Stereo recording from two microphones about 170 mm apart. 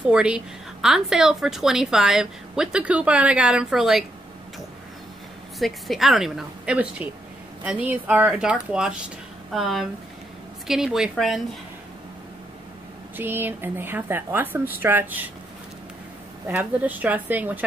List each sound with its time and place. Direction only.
0.1 s a woman's voice: 5° right (ahead or behind)
5.6 s a woman's voice: centre (ahead or behind)
13.1 s speech: 10° right (ahead or behind)
16.4 s speech: 10° right (ahead or behind)